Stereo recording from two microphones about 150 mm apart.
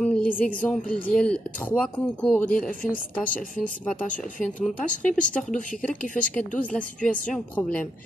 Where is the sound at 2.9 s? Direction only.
65° left (ahead or behind).